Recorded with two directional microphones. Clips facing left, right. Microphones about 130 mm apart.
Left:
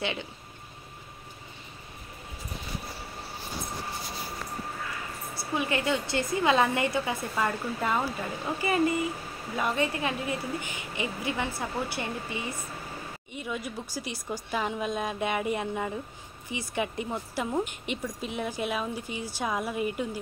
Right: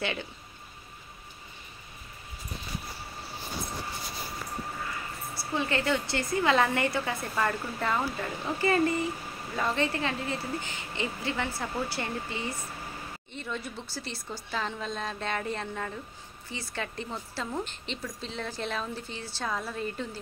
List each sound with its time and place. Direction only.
0.0 s a woman's voice: 20° left (ahead or behind)
5.5 s a woman's voice: 15° left (ahead or behind)